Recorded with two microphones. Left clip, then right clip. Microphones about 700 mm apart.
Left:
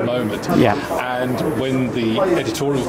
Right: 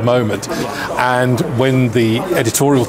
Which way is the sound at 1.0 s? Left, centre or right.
Right.